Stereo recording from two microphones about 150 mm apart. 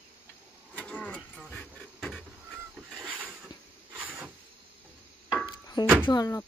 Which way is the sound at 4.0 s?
10° right (ahead or behind).